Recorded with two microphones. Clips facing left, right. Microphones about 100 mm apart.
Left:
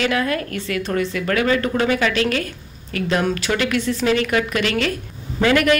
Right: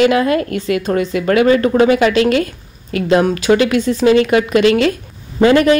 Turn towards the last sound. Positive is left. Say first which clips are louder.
# right 6 dB
turn(degrees=-30)  # may be behind; listen again after turning